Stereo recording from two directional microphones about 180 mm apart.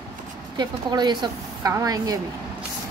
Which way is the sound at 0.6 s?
25° right (ahead or behind).